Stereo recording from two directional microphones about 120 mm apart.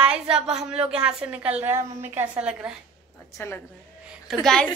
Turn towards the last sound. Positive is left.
turn(degrees=5)  # may be behind; listen again after turning